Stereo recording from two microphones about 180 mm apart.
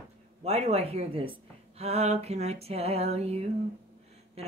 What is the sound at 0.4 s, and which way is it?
Mantra, 35° right (ahead or behind).